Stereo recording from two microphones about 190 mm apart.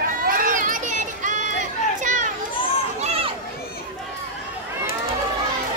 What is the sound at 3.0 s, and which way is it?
Run, 30° right (ahead or behind).